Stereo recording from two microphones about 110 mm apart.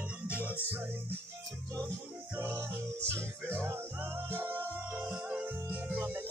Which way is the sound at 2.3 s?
20° right (ahead or behind).